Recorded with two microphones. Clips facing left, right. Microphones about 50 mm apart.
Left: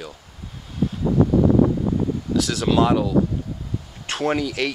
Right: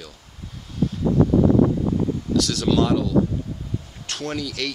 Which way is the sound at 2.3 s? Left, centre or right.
Centre.